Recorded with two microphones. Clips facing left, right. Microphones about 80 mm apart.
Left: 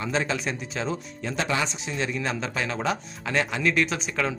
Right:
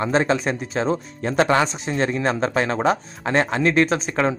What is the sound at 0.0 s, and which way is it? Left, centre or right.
Speech, right.